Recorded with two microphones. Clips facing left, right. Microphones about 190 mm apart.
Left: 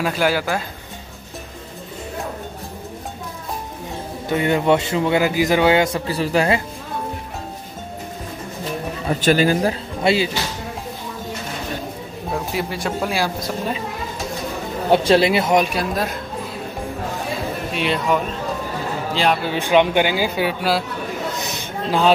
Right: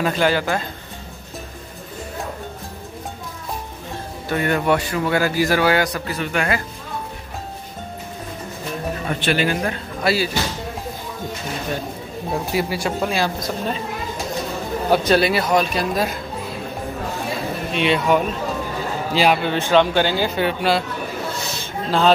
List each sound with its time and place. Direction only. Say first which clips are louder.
0.0 s speech: right 1 dB; 5° left (ahead or behind)
4.3 s a man's voice: left 2 dB; 20° left (ahead or behind)
9.2 s speech: left 5 dB; 40° left (ahead or behind); by 10.3 s 20° left (ahead or behind)
12.5 s speech: right 3 dB; centre (ahead or behind)
13.1 s speech: even; 10° left (ahead or behind)
14.9 s a man's voice: left 2 dB; 25° left (ahead or behind)
15.7 s speech: right 1 dB; centre (ahead or behind)
17.7 s speech: right 3 dB; centre (ahead or behind)
19.4 s speech: even; 10° left (ahead or behind)
21.4 s a sound: left 1 dB; 15° left (ahead or behind)